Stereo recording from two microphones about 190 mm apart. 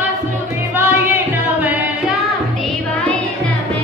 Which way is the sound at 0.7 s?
10° right (ahead or behind).